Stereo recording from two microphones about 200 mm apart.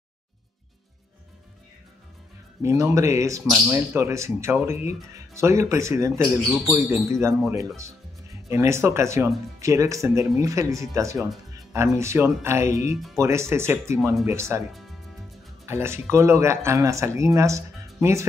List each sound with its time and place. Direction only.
2.6 s speech: 15° right (ahead or behind)
15.6 s speech: 15° right (ahead or behind)